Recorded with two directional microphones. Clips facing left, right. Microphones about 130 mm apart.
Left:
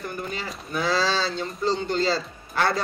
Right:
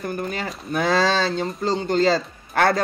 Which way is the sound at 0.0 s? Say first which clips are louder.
Right 5 dB; 50° right (ahead or behind).